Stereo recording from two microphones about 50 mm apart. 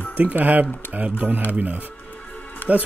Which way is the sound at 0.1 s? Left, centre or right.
Right.